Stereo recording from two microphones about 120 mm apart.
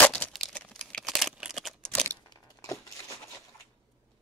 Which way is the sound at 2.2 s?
30° left (ahead or behind).